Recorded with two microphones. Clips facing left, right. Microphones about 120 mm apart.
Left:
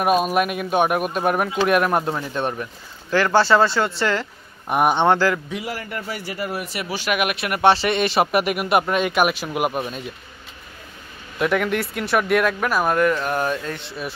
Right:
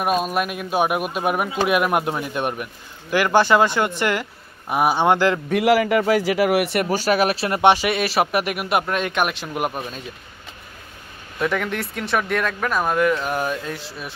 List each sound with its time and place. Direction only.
0.0 s speech: 5° left (ahead or behind); by 4.3 s 15° right (ahead or behind)
4.6 s speech: 5° right (ahead or behind)
5.5 s a man's voice: 80° right
6.8 s speech: 45° right (ahead or behind); by 7.7 s 25° right (ahead or behind)
7.7 s speech: 10° right (ahead or behind)
11.3 s speech: 5° left (ahead or behind)